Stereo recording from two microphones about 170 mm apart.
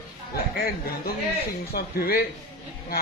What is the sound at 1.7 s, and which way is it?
Speech, 65° left (ahead or behind).